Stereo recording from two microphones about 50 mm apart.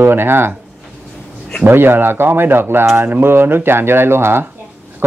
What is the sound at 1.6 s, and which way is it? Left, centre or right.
Speech, right.